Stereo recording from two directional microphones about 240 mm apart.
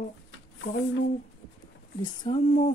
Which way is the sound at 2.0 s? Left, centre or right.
Left.